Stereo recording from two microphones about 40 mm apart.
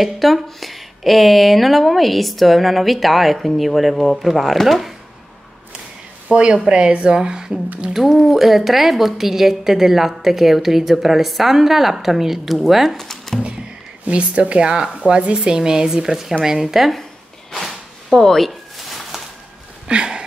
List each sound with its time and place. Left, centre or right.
0.0 s speech: centre
6.3 s speech: right
7.9 s a woman's voice: centre
12.9 s music: centre
14.0 s speech: right
15.5 s a woman's voice: centre
18.1 s speech: centre
19.1 s a sound: centre
19.9 s a sound: right